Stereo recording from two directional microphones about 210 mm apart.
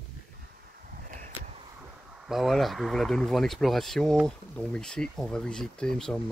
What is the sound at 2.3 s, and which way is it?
Speech, centre (ahead or behind).